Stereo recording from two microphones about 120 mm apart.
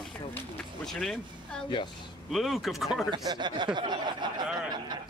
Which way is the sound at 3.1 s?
35° right (ahead or behind).